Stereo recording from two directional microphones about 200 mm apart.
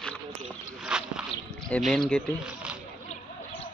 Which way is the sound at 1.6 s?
5° left (ahead or behind).